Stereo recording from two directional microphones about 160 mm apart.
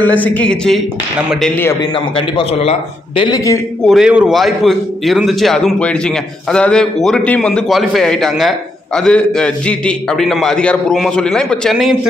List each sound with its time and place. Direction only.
0.0 s speech: 10° left (ahead or behind)
1.8 s a man's voice: 35° left (ahead or behind)
3.3 s a man's voice: 20° left (ahead or behind)
3.8 s a man's voice: 5° right (ahead or behind)